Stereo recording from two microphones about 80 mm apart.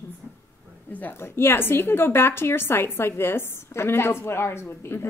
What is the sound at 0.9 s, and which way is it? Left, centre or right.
A woman's voice, left.